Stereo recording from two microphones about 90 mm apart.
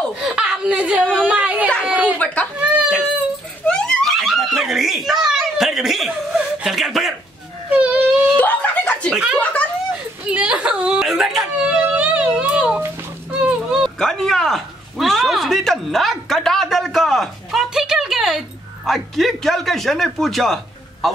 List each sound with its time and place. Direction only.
0.2 s speech: 10° right (ahead or behind)
2.1 s speech: 15° left (ahead or behind)
2.6 s speech: 10° right (ahead or behind)
3.6 s giggle: 10° left (ahead or behind)
7.7 s baby cry: 15° right (ahead or behind)
8.4 s a sound: 15° left (ahead or behind)
10.2 s whimper: 10° right (ahead or behind)
13.3 s a sound: 10° right (ahead or behind)
13.9 s a sound: 5° left (ahead or behind)
18.9 s speech: centre (ahead or behind)